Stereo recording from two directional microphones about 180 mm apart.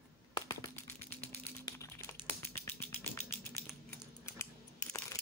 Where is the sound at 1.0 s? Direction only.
10° left (ahead or behind).